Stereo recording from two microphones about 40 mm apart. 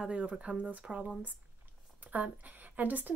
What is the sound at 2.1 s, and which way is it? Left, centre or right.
A woman's voice, right.